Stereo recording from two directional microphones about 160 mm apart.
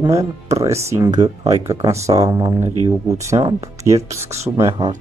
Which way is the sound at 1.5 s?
20° right (ahead or behind).